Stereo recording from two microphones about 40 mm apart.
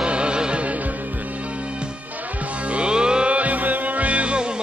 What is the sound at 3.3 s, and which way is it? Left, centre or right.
Music, right.